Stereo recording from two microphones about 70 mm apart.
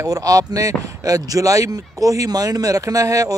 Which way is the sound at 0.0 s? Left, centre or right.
Right.